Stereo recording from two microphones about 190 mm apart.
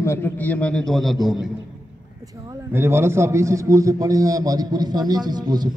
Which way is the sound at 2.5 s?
15° right (ahead or behind).